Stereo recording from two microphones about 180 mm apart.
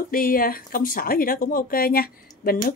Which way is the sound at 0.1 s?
50° left (ahead or behind).